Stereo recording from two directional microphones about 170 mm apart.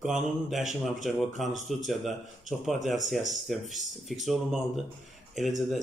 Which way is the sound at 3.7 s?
Centre (ahead or behind).